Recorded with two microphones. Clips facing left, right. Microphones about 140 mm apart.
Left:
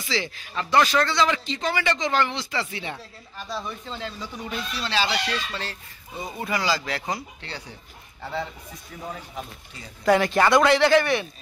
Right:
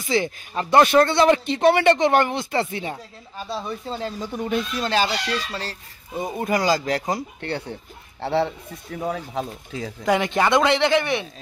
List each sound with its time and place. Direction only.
0.0 s speech: 50° right (ahead or behind)
2.9 s speech: 35° right (ahead or behind); by 7.7 s 55° right (ahead or behind)
8.2 s speech: 70° right (ahead or behind); by 9.9 s 90° right
10.0 s speech: 20° right (ahead or behind)